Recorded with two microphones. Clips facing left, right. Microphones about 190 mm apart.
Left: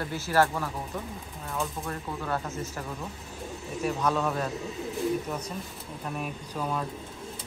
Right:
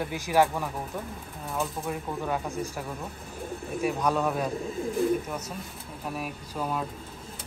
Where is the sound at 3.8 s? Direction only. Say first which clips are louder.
Right 1 dB; 10° right (ahead or behind).